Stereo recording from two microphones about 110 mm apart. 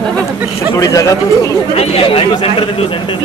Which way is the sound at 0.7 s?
30° left (ahead or behind).